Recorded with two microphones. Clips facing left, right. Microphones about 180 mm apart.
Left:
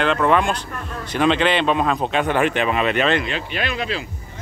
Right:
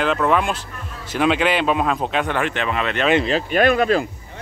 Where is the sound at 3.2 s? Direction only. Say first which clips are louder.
Right 9 dB; 40° right (ahead or behind).